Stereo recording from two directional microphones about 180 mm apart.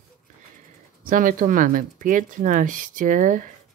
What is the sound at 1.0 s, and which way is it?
Speech, 50° right (ahead or behind).